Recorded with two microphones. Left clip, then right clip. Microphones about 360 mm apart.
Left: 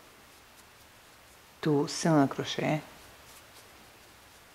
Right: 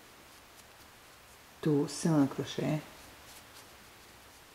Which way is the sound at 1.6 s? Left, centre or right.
Centre.